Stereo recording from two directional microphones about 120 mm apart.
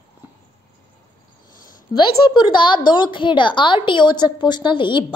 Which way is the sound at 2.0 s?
40° left (ahead or behind).